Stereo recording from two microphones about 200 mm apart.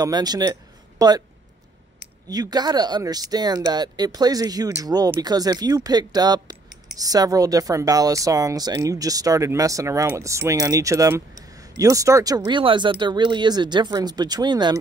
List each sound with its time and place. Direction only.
0.0 s speech: 20° right (ahead or behind)